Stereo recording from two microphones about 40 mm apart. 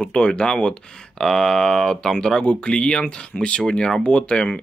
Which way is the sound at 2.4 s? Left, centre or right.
Left.